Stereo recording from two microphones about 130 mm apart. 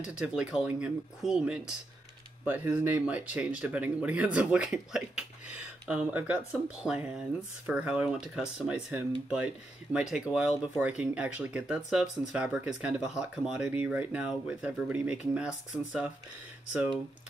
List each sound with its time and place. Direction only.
0.0 s speech: 5° right (ahead or behind)